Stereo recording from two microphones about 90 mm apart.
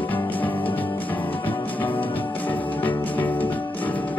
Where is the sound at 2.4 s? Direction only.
20° left (ahead or behind).